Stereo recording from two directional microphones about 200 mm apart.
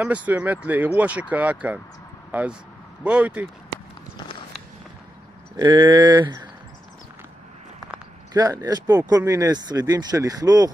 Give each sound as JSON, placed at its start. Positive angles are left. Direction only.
{"t": 0.0, "sound": "speech", "side_deg": -5}
{"t": 3.0, "sound": "speech", "side_deg": -5}
{"t": 5.6, "sound": "speech", "side_deg": -20}
{"t": 8.3, "sound": "speech", "side_deg": -20}